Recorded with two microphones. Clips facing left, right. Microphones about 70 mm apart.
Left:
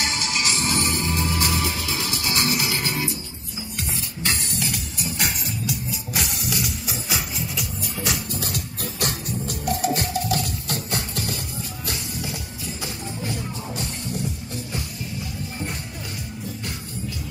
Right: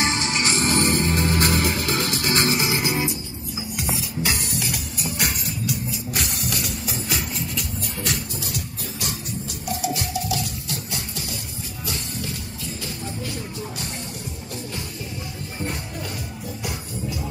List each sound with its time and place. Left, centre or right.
0.0 s music: right
2.6 s music: right
3.7 s music: centre
8.3 s music: left
11.9 s music: centre